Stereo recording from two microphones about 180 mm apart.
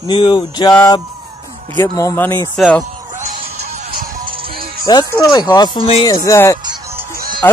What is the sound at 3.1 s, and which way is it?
Music, 40° right (ahead or behind).